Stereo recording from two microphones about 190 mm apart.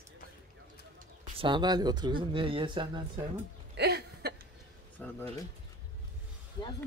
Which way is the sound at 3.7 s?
60° right (ahead or behind).